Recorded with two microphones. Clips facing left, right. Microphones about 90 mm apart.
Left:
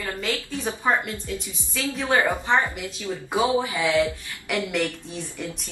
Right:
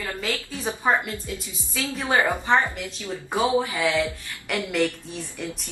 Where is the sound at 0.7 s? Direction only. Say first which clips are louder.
Right 1 dB; 10° right (ahead or behind).